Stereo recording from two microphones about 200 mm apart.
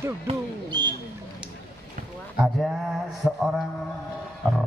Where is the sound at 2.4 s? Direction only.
Centre (ahead or behind).